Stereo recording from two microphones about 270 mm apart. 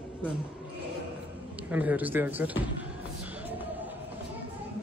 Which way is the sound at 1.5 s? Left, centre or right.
Centre.